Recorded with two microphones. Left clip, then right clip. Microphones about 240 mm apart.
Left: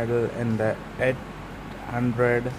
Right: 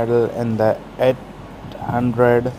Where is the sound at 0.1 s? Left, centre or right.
Centre.